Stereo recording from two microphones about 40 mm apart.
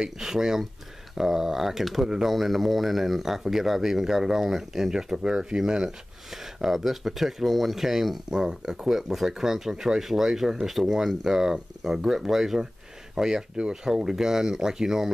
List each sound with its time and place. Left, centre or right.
0.0 s speech: centre
8.3 s speech: centre
8.8 s speech: centre